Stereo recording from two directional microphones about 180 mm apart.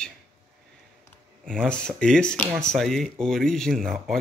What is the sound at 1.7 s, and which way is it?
Speech, 5° left (ahead or behind).